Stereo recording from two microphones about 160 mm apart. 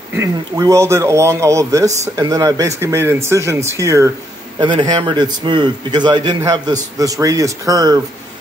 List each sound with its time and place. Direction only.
0.1 s a man's voice: 20° right (ahead or behind)
4.6 s a man's voice: 30° right (ahead or behind)